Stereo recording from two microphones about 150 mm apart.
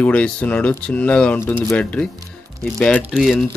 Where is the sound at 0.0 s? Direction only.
10° left (ahead or behind).